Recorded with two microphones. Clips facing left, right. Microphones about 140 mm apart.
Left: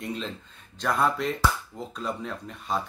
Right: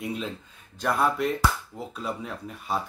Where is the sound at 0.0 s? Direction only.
10° right (ahead or behind).